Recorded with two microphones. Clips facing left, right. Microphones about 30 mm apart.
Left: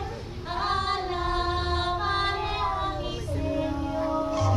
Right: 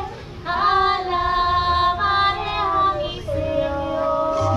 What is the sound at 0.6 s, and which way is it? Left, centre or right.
Female singing, right.